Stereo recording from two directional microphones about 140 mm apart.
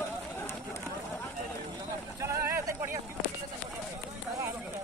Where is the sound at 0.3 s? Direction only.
20° left (ahead or behind).